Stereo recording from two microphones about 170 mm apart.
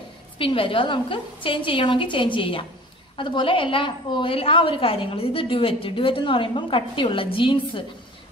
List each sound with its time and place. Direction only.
0.4 s a woman's voice: 30° left (ahead or behind)